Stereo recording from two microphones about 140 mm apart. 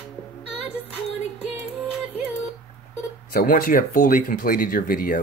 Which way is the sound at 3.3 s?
85° left.